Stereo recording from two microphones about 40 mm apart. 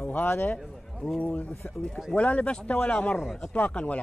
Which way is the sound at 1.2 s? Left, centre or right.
Left.